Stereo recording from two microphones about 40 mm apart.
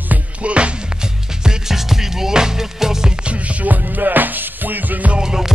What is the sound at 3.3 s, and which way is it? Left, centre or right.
Music, right.